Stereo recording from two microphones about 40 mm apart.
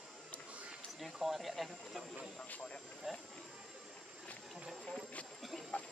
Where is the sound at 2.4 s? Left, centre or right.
Left.